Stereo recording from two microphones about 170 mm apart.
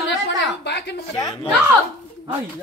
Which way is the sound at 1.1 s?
25° left (ahead or behind).